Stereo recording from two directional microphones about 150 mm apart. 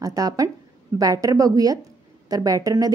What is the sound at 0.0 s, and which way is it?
A woman's voice, 25° right (ahead or behind).